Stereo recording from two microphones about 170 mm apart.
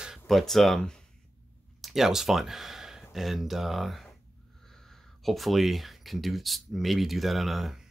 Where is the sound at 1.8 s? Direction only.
Centre (ahead or behind).